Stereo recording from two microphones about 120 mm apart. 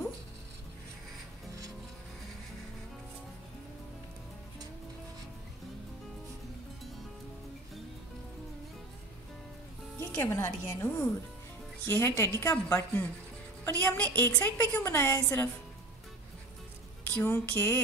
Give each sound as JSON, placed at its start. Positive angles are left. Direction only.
{"t": 9.9, "sound": "a woman's voice", "side_deg": 20}
{"t": 17.1, "sound": "speech", "side_deg": 15}